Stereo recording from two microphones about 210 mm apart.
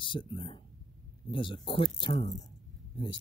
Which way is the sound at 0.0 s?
25° left (ahead or behind).